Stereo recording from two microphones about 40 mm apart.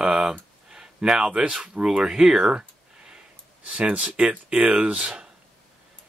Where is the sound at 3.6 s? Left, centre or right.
Right.